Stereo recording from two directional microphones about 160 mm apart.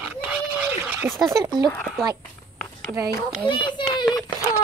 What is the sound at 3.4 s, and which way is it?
Speech, 30° left (ahead or behind).